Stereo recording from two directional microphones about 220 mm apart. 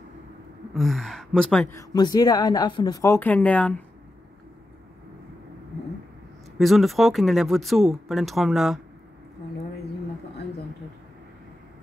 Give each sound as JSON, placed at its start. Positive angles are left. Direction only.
{"t": 0.7, "sound": "speech", "side_deg": 0}
{"t": 1.7, "sound": "a woman's voice", "side_deg": 15}
{"t": 6.6, "sound": "speech", "side_deg": 0}